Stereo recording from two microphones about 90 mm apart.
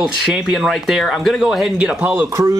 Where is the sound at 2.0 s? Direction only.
20° right (ahead or behind).